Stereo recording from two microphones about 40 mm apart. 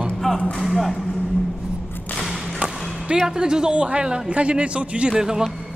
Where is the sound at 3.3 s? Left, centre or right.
Centre.